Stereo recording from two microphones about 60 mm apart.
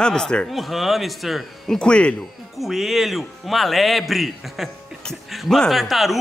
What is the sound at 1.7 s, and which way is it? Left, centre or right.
Speech, centre.